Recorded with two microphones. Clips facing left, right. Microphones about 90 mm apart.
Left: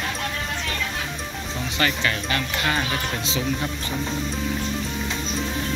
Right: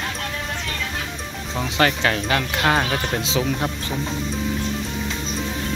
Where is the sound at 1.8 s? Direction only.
80° right.